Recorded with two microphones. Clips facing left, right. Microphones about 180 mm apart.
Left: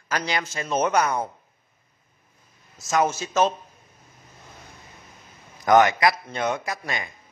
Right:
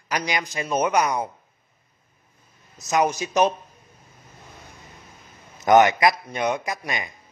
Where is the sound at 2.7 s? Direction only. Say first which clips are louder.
Right 1 dB; 20° right (ahead or behind).